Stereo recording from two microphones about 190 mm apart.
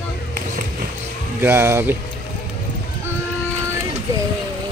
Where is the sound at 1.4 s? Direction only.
10° right (ahead or behind).